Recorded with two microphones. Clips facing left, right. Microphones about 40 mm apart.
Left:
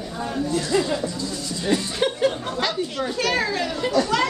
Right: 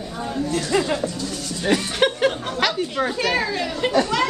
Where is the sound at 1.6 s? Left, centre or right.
Right.